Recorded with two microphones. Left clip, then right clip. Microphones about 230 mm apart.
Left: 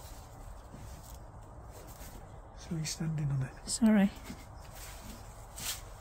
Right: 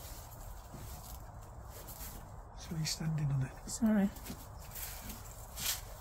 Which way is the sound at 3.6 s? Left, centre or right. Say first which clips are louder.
Left 5 dB; centre.